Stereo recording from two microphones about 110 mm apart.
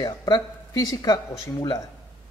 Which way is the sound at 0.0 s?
35° left (ahead or behind).